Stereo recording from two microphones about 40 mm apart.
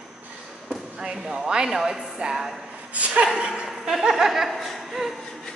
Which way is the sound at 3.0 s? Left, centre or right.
Right.